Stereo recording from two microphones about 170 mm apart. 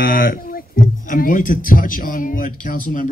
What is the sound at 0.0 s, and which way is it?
Speech, 60° left (ahead or behind).